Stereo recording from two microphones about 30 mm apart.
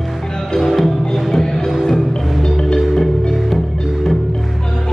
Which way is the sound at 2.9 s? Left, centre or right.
Centre.